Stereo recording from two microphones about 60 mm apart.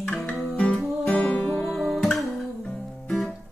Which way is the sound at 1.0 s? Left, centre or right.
Left.